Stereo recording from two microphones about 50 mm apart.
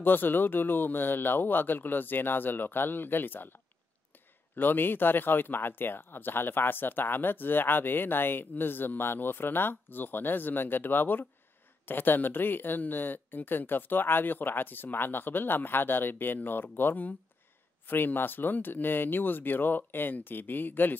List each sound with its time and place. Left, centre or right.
0.0 s speech: left
4.6 s speech: left